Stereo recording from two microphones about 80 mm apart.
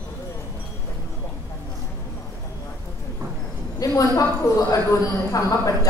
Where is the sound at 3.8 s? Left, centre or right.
Left.